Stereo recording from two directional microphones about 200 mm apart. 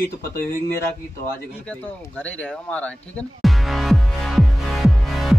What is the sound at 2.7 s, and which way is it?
Music, 5° left (ahead or behind).